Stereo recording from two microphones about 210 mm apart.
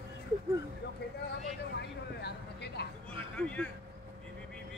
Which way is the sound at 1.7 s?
50° left (ahead or behind).